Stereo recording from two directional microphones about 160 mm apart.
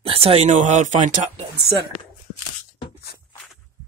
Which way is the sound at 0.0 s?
35° right (ahead or behind).